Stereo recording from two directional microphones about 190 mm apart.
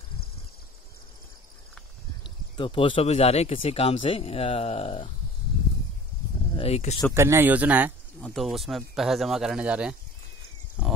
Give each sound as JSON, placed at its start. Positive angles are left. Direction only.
{"t": 2.2, "sound": "speech", "side_deg": 25}
{"t": 6.5, "sound": "speech", "side_deg": 30}
{"t": 7.2, "sound": "speech", "side_deg": -15}
{"t": 10.8, "sound": "pig", "side_deg": -5}